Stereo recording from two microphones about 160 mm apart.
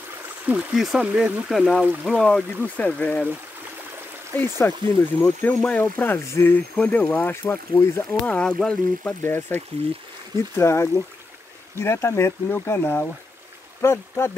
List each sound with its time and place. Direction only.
0.5 s speech: 5° right (ahead or behind)
4.4 s speech: 15° left (ahead or behind)
10.6 s speech: 15° left (ahead or behind)